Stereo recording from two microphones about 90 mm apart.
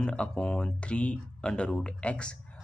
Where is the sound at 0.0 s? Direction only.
10° left (ahead or behind).